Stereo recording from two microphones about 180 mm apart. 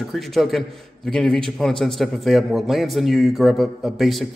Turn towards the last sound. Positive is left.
turn(degrees=0)  # may be behind; listen again after turning